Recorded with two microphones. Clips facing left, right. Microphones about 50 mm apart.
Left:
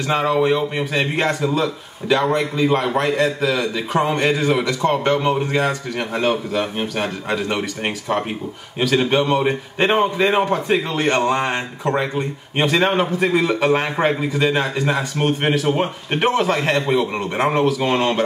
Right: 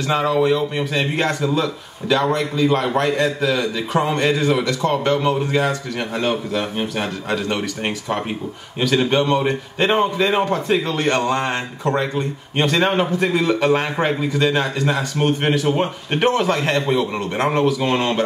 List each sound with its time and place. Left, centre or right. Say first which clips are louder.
0.1 s a man's voice: even; centre
0.9 s a man's voice: left 1 dB; centre
2.8 s a man's voice: even; centre
6.2 s a man's voice: left 2 dB; centre